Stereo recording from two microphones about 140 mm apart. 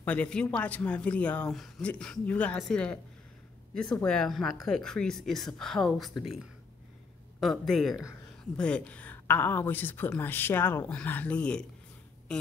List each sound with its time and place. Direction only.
0.0 s speech: 10° left (ahead or behind)
7.3 s speech: centre (ahead or behind)